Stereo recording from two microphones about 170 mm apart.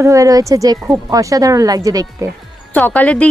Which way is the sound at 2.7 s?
10° left (ahead or behind).